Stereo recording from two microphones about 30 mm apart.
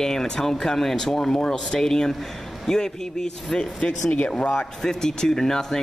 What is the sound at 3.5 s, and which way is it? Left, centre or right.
Speech, left.